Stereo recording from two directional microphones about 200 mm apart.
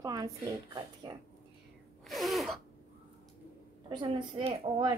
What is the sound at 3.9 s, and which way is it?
A woman's voice, 20° right (ahead or behind).